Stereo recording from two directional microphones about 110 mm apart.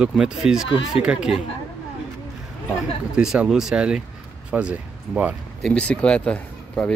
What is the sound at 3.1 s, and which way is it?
Speech, 5° right (ahead or behind).